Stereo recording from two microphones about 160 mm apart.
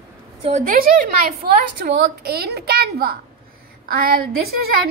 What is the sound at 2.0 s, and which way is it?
A woman's voice, 80° right.